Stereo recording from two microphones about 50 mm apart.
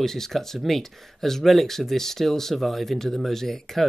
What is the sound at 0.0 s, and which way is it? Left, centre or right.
Speech, centre.